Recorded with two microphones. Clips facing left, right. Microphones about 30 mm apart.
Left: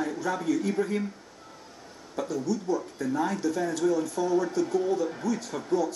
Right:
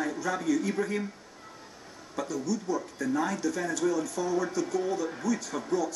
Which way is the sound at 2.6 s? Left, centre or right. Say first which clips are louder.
Left 2 dB; left.